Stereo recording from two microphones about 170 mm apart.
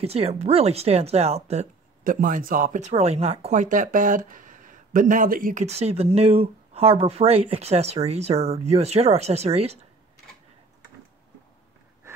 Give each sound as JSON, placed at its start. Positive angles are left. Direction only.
{"t": 0.0, "sound": "speech", "side_deg": -35}
{"t": 2.0, "sound": "speech", "side_deg": -55}